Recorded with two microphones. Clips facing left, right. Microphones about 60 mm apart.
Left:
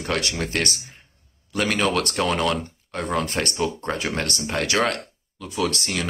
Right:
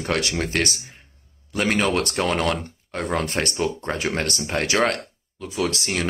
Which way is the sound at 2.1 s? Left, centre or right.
Right.